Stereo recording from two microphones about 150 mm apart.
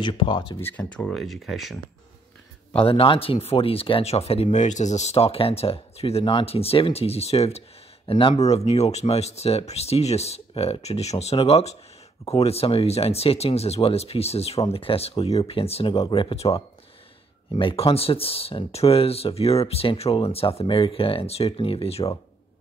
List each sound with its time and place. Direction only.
0.0 s speech: 35° left (ahead or behind)
0.6 s speech: 10° left (ahead or behind)
2.8 s speech: 35° left (ahead or behind)
8.4 s speech: 45° left (ahead or behind)